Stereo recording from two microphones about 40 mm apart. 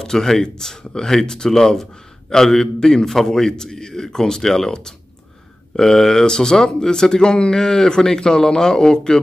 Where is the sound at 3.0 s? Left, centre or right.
Centre.